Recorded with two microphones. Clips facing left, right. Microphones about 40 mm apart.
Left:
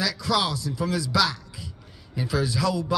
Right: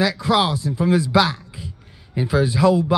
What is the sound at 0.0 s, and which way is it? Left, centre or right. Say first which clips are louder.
A man's voice: right 6 dB; right.